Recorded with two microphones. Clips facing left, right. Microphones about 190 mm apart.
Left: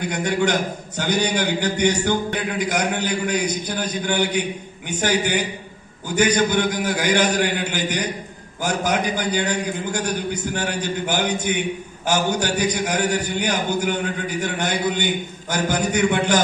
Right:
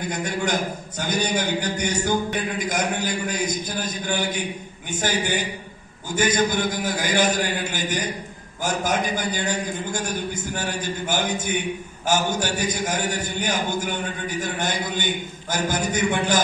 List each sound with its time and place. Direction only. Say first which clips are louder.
0.0 s a man's voice: left 5 dB; 70° left (ahead or behind)